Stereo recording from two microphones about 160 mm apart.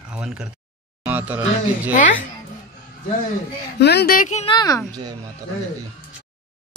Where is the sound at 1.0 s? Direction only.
10° right (ahead or behind).